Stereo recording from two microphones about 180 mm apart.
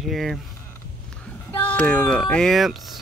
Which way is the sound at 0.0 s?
Centre (ahead or behind).